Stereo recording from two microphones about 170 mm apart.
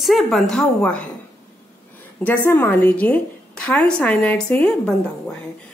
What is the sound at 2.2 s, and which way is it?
A woman's voice, 10° left (ahead or behind).